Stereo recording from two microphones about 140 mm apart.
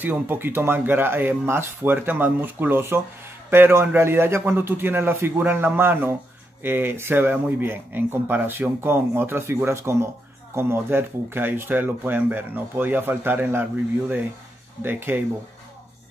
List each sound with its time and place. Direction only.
0.0 s speech: 15° right (ahead or behind)